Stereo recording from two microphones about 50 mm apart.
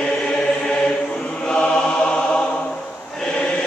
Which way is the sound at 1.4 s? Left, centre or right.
Centre.